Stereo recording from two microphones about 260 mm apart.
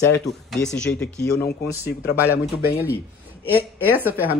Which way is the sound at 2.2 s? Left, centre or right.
Centre.